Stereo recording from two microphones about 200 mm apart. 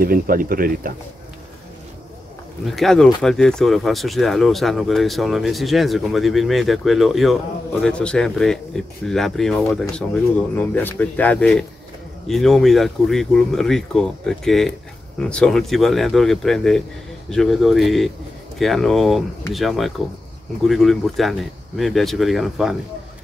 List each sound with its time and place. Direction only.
0.0 s speech: 45° right (ahead or behind)
2.6 s speech: centre (ahead or behind)